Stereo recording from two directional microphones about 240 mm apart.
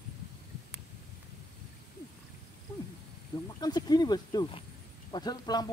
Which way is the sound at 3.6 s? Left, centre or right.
Centre.